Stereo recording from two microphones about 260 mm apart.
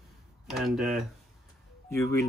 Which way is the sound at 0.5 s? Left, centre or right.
Centre.